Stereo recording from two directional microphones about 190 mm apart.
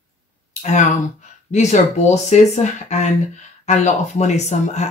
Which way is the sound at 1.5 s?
35° left (ahead or behind).